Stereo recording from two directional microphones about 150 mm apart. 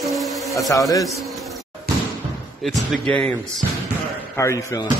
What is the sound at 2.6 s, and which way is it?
Speech, centre (ahead or behind).